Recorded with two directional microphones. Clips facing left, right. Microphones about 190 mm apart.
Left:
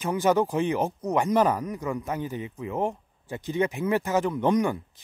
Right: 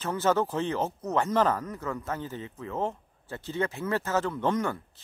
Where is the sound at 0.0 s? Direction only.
15° left (ahead or behind).